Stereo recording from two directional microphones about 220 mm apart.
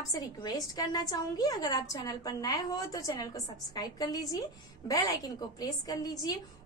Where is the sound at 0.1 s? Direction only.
15° left (ahead or behind).